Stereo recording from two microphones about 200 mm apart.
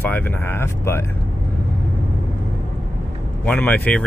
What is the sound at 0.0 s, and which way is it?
Speech, 10° left (ahead or behind).